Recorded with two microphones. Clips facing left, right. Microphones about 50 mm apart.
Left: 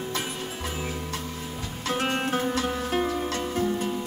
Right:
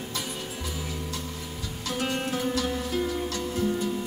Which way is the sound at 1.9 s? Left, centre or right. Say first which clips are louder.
Left 3 dB; left.